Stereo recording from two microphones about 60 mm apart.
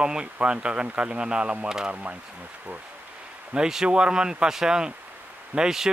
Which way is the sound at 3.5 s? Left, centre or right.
Centre.